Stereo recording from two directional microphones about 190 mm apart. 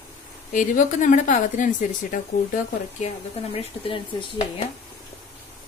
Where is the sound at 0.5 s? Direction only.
40° left (ahead or behind).